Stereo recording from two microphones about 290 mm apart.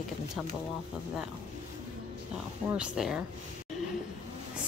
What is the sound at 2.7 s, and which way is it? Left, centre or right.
Speech, centre.